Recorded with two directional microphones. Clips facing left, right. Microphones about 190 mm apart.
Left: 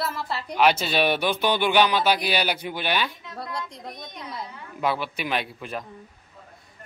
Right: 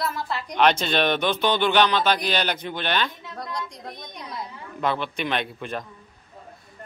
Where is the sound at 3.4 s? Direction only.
25° left (ahead or behind).